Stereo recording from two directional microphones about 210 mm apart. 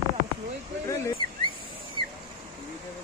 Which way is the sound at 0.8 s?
15° left (ahead or behind).